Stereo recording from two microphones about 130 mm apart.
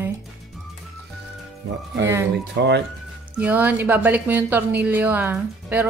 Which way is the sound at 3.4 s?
15° right (ahead or behind).